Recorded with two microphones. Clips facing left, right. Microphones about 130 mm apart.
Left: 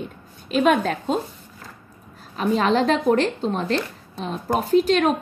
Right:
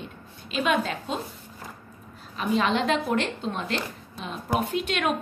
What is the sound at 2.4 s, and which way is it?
A woman's voice, 40° left (ahead or behind).